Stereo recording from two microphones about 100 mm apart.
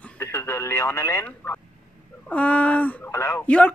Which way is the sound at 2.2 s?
15° left (ahead or behind).